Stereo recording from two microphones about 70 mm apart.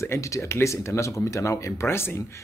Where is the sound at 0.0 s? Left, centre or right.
Left.